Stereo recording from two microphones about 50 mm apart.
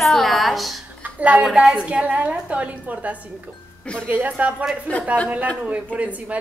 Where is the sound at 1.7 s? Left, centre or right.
Right.